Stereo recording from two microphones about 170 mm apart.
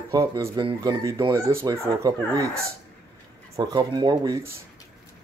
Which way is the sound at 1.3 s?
15° right (ahead or behind).